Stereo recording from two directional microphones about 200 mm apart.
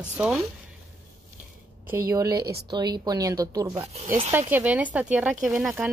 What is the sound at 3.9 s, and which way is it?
Speech, 35° right (ahead or behind).